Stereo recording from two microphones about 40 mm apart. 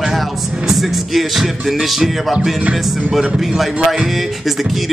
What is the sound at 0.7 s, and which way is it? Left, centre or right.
Speech, centre.